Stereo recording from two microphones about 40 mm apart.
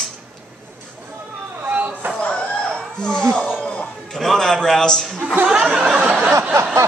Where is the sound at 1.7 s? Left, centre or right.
Right.